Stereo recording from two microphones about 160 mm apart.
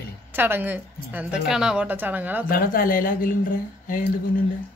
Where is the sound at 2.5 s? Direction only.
60° left (ahead or behind).